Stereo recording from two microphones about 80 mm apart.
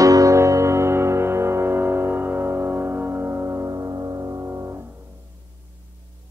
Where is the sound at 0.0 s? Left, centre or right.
Right.